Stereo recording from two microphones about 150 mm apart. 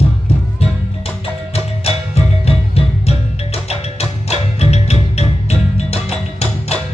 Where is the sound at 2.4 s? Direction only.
45° left (ahead or behind).